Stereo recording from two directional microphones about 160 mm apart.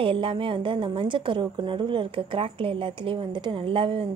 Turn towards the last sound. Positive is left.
turn(degrees=-35)  # may be behind; listen again after turning